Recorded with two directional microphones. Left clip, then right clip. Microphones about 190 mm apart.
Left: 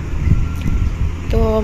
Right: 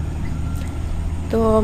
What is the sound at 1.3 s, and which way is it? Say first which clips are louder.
Speech: right 1 dB; 20° right (ahead or behind).